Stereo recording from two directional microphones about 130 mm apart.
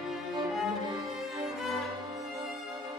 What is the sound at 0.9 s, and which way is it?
Music, 30° right (ahead or behind).